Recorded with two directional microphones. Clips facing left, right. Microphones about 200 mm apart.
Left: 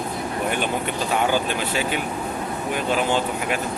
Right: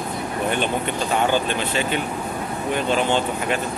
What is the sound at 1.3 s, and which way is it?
Speech, 5° left (ahead or behind).